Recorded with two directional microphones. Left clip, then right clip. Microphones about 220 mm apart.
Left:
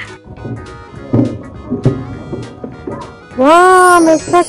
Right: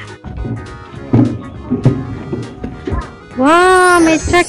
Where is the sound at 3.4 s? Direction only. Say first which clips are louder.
Left 2 dB; 30° right (ahead or behind).